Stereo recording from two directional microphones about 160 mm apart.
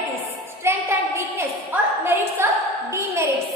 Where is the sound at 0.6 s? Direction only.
15° right (ahead or behind).